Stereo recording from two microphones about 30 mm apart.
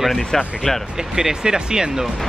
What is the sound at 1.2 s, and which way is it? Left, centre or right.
Speech, right.